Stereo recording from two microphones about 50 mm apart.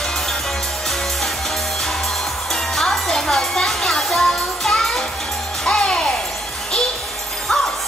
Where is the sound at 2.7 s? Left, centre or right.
Centre.